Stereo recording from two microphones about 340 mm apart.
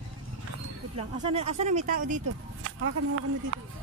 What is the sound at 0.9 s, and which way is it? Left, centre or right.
Speech, centre.